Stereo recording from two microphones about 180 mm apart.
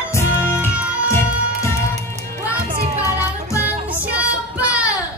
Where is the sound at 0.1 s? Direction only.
15° left (ahead or behind).